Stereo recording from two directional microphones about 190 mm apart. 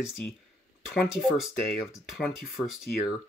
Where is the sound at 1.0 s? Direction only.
Centre (ahead or behind).